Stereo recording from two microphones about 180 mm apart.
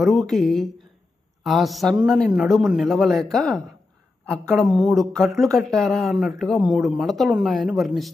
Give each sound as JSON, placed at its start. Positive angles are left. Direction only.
{"t": 0.0, "sound": "speech", "side_deg": 0}